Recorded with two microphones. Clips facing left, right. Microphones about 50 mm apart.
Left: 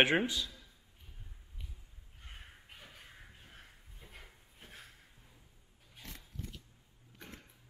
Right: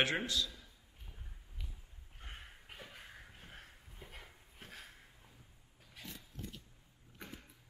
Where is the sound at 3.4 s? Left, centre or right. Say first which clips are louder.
Right 2 dB; right.